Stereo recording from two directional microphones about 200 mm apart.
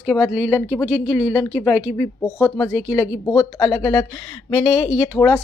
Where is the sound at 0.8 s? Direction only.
5° right (ahead or behind).